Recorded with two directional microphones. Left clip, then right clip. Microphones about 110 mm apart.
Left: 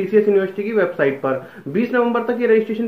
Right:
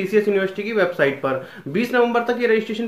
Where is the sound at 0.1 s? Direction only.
15° right (ahead or behind).